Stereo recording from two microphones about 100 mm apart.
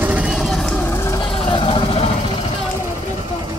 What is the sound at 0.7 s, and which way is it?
Vehicle, 25° left (ahead or behind).